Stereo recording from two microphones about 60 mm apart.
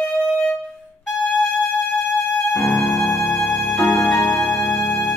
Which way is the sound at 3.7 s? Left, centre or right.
Centre.